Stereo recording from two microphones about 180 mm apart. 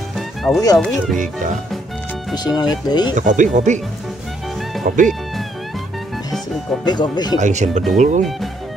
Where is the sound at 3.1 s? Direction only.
45° right (ahead or behind).